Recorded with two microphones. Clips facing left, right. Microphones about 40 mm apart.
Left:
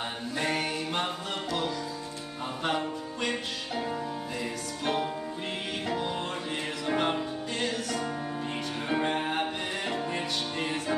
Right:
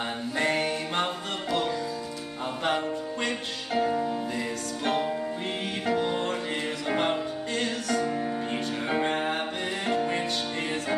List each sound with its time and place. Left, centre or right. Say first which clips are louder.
0.4 s a capella: right 3 dB; centre
3.8 s music: right 6 dB; centre
5.9 s music: right 6 dB; right
6.9 s music: right 1 dB; centre
8.8 s music: right 1 dB; centre